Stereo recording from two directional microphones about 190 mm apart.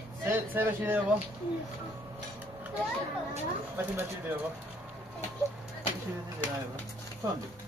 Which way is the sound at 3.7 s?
10° right (ahead or behind).